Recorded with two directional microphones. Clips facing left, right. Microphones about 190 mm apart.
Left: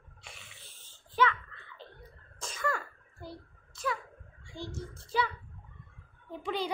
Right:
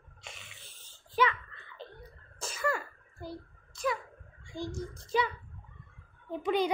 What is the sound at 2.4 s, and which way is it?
Cough, 10° right (ahead or behind).